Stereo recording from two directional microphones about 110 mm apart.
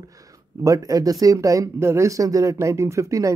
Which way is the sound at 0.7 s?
30° right (ahead or behind).